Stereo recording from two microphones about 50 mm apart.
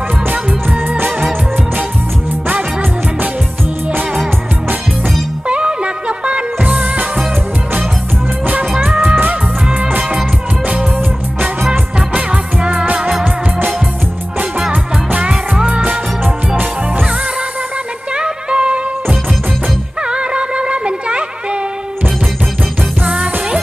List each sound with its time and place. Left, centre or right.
0.3 s music: right
5.5 s music: right
8.7 s music: centre
12.7 s music: right
14.7 s music: right
15.2 s music: centre
18.1 s music: centre
20.0 s music: centre